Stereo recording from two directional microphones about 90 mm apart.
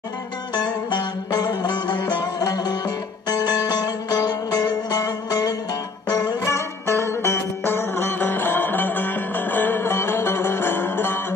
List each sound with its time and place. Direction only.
1.3 s music: 45° left (ahead or behind)
6.4 s music: 30° left (ahead or behind)